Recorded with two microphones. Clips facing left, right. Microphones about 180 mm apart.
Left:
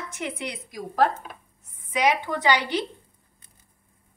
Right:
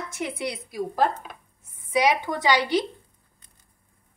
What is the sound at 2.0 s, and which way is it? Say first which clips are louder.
Speech: left 2 dB; 15° right (ahead or behind).